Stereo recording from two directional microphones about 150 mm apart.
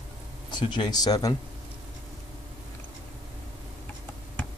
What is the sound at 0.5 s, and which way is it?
Speech, 30° left (ahead or behind).